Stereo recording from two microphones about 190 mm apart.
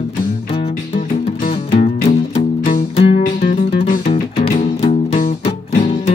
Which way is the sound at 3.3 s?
50° left (ahead or behind).